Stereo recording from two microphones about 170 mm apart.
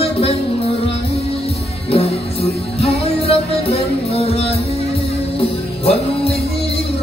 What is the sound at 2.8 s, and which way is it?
Music, 35° left (ahead or behind).